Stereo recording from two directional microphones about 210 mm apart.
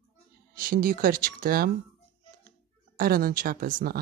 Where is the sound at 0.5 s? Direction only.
40° right (ahead or behind).